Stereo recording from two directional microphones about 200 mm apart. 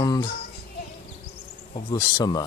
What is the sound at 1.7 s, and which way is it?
Speech, 20° left (ahead or behind).